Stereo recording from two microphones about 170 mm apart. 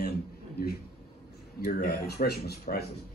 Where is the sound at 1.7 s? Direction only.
65° left (ahead or behind).